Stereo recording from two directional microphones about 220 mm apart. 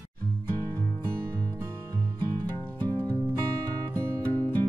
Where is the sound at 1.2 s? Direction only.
10° right (ahead or behind).